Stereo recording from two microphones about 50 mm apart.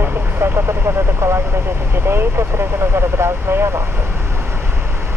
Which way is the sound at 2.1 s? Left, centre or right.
Right.